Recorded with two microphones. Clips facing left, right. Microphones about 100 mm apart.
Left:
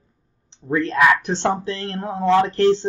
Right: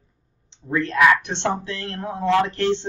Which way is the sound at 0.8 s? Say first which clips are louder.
Even; 35° left (ahead or behind).